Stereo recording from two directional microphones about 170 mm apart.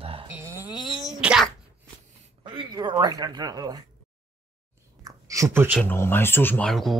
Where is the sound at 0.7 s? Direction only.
30° left (ahead or behind).